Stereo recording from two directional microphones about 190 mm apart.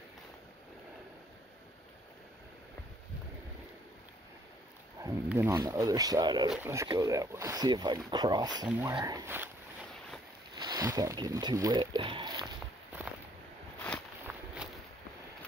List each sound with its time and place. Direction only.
5.0 s speech: 15° right (ahead or behind)
8.6 s speech: 10° right (ahead or behind)
10.5 s speech: 20° right (ahead or behind)
14.3 s walk: centre (ahead or behind)